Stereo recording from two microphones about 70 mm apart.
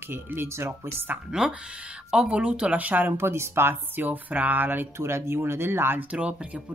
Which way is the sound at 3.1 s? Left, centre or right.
Right.